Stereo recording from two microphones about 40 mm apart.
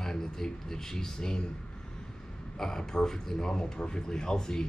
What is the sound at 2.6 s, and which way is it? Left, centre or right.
Speech, centre.